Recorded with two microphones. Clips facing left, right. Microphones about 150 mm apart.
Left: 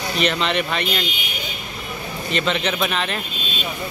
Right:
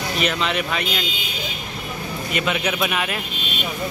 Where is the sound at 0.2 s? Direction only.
5° right (ahead or behind).